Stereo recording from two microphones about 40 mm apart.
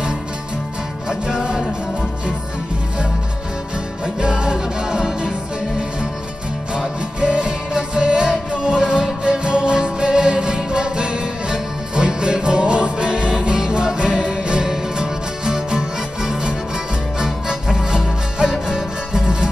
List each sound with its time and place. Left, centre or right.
1.0 s music: centre
4.0 s music: right
7.2 s music: right